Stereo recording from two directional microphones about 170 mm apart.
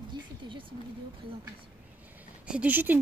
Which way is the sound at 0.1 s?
30° right (ahead or behind).